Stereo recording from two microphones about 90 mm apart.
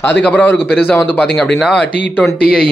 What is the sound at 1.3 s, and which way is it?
Speech, 5° left (ahead or behind).